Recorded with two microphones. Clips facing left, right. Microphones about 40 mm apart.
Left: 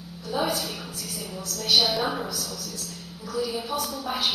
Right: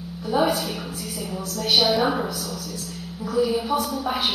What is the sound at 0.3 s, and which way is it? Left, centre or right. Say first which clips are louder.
A woman's voice: right 5 dB; centre.